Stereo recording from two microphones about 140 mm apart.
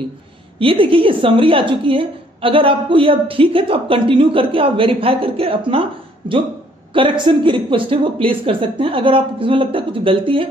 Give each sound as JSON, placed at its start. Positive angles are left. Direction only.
{"t": 0.6, "sound": "a woman's voice", "side_deg": -40}